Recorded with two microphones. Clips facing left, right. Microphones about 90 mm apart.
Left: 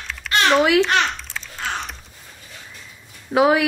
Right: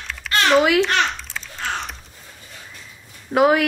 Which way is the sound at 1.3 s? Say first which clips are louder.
Even; centre (ahead or behind).